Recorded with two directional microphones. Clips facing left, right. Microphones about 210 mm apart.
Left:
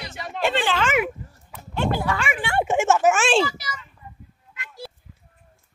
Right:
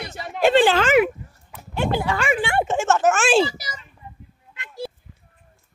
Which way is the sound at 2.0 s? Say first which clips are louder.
Right 3 dB; 35° right (ahead or behind).